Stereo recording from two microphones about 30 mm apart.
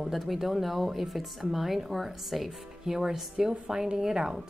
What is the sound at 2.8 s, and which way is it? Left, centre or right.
Speech, centre.